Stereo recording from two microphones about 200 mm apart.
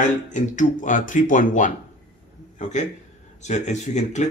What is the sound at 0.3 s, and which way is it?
Speech, 40° left (ahead or behind).